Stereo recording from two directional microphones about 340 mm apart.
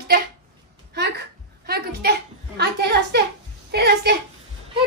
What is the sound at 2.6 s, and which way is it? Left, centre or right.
A child's voice, right.